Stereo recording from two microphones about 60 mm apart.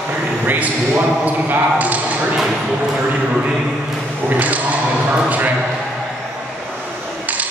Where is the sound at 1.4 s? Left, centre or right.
Right.